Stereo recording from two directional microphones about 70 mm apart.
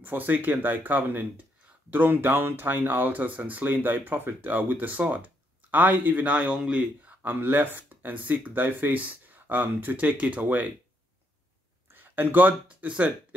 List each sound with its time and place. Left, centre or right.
0.0 s speech: right
11.9 s speech: right